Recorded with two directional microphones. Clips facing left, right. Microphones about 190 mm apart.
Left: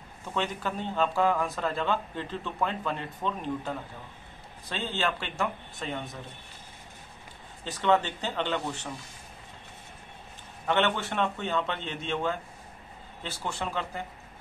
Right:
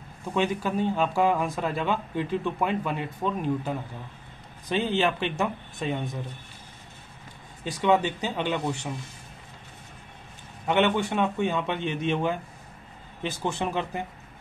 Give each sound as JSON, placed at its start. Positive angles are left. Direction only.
{"t": 0.3, "sound": "speech", "side_deg": -10}
{"t": 7.6, "sound": "speech", "side_deg": -10}
{"t": 10.7, "sound": "speech", "side_deg": -15}